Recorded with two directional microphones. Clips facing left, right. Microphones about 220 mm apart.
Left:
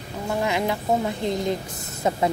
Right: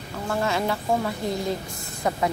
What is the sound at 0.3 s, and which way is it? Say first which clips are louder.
A woman's voice: left 1 dB; 15° left (ahead or behind).